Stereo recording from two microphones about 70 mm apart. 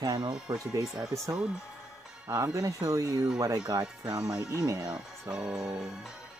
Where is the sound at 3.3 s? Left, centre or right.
Right.